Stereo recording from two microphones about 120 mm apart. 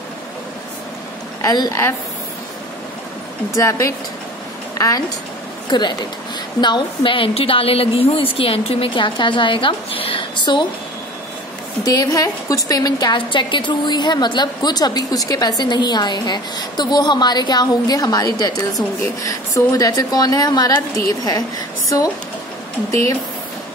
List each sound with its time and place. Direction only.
1.4 s a woman's voice: 30° left (ahead or behind)
3.5 s a woman's voice: 25° left (ahead or behind); by 10.6 s 45° left (ahead or behind)
11.8 s a woman's voice: 30° left (ahead or behind)
19.7 s a woman's voice: 30° left (ahead or behind)